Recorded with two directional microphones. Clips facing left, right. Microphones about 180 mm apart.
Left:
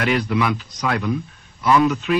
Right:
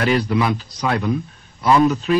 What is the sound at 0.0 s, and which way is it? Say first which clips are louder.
Speech: right 2 dB; 35° right (ahead or behind).